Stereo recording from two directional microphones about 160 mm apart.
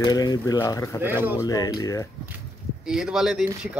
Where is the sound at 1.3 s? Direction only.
20° left (ahead or behind).